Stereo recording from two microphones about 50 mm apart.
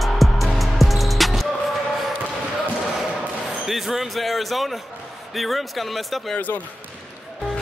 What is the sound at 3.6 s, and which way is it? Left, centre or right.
Music, centre.